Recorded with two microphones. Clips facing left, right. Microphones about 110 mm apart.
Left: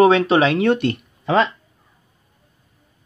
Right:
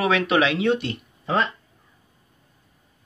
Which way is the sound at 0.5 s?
60° left (ahead or behind).